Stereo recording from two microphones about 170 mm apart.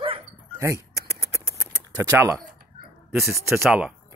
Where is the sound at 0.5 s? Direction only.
15° right (ahead or behind).